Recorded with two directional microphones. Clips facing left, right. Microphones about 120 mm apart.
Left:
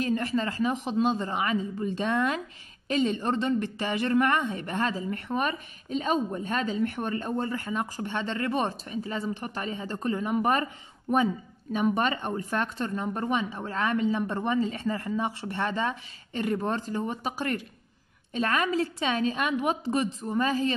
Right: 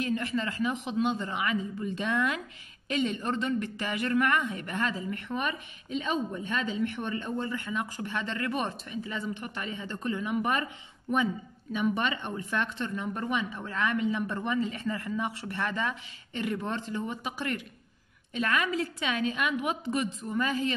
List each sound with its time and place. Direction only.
0.0 s a woman's voice: 35° left (ahead or behind)